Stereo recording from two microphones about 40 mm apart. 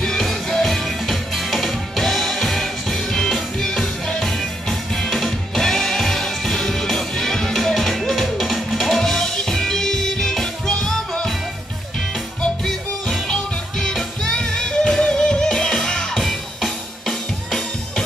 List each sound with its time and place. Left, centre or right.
0.5 s music: centre
5.6 s music: centre
13.3 s music: centre